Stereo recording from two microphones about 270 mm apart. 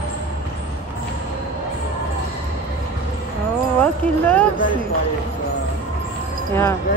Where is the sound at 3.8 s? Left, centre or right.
Centre.